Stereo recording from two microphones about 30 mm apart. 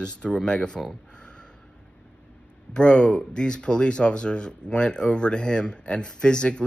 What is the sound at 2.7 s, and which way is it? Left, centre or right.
Speech, left.